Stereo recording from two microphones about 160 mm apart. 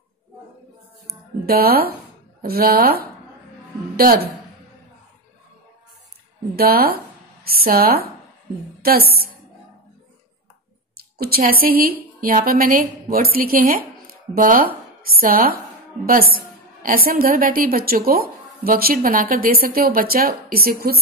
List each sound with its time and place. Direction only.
1.4 s a woman's voice: 70° right (ahead or behind)
6.5 s speech: 70° right (ahead or behind)
11.0 s a sound: 75° right (ahead or behind)
11.6 s speech: 65° right (ahead or behind)